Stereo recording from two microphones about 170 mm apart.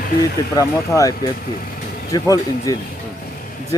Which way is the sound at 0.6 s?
20° left (ahead or behind).